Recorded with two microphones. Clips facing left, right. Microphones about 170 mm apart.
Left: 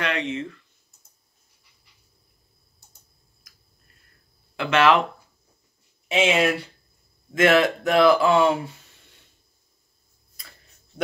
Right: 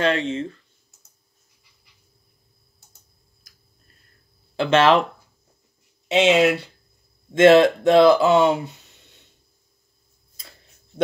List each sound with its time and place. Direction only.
0.0 s speech: 30° right (ahead or behind)
4.6 s speech: 30° right (ahead or behind)
6.0 s speech: 20° right (ahead or behind)